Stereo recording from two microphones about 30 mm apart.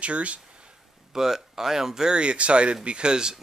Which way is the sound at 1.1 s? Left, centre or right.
Centre.